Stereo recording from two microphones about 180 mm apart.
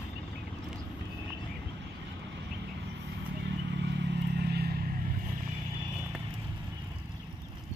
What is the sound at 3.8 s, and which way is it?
Vehicle, 70° right (ahead or behind).